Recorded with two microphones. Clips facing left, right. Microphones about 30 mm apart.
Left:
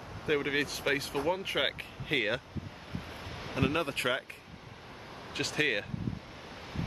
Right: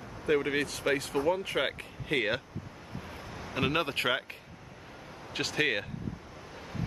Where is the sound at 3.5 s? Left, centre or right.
Right.